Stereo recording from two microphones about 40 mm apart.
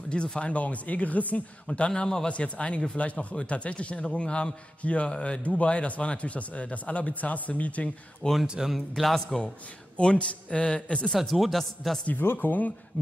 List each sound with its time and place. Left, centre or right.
0.1 s speech: left
1.9 s a man's voice: centre
2.2 s a man's voice: left
8.2 s a man's voice: left
8.7 s a man's voice: centre
9.9 s a man's voice: left
11.1 s a man's voice: centre
12.2 s speech: left